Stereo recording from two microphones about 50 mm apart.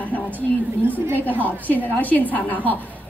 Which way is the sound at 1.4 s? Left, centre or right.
Left.